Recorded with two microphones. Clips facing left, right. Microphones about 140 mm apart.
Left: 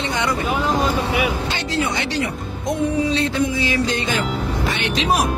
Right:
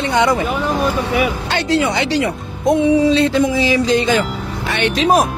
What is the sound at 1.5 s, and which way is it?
Music, 80° right.